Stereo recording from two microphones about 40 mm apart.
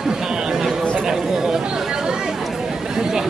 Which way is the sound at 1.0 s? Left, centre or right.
Centre.